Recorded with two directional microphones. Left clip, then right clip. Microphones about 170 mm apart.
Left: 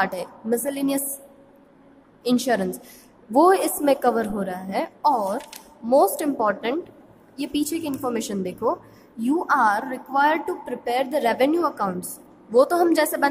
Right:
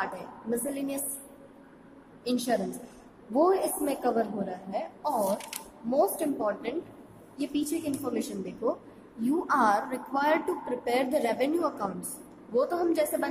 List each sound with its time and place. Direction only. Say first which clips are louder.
0.0 s a woman's voice: left 9 dB; 40° left (ahead or behind)
2.2 s a woman's voice: left 7 dB; 40° left (ahead or behind)
12.5 s a woman's voice: left 9 dB; 40° left (ahead or behind)